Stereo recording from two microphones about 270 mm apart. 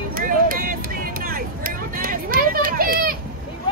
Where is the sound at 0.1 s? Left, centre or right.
Right.